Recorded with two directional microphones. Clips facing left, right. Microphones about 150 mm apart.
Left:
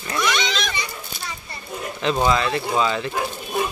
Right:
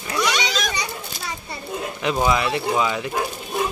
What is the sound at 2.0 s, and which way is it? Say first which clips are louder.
Speech: left 1 dB; 10° right (ahead or behind).